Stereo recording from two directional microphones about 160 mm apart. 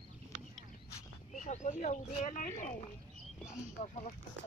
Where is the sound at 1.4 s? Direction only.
50° left (ahead or behind).